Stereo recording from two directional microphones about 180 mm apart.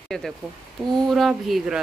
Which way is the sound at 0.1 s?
5° left (ahead or behind).